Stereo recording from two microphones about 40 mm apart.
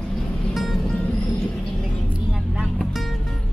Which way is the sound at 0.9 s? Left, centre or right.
Left.